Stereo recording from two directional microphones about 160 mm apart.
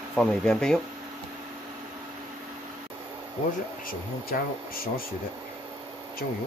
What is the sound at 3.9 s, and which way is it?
Speech, 65° left (ahead or behind).